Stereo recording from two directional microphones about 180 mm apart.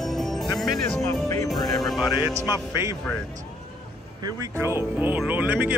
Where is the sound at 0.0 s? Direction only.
Centre (ahead or behind).